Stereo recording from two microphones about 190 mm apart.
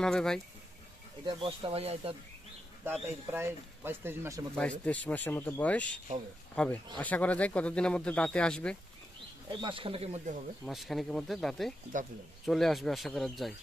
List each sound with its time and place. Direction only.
0.0 s speech: 5° left (ahead or behind)
1.2 s speech: 30° right (ahead or behind)
2.8 s speech: 10° right (ahead or behind)
4.6 s speech: 5° left (ahead or behind)
9.5 s speech: 25° right (ahead or behind)
10.6 s speech: centre (ahead or behind)
11.9 s speech: 45° right (ahead or behind)
12.4 s speech: centre (ahead or behind)